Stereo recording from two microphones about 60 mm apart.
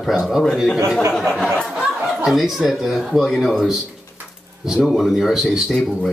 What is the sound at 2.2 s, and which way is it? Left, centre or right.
Speech, centre.